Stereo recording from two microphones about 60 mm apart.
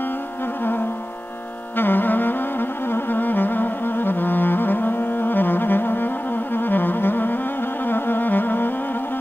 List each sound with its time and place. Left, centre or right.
1.8 s music: left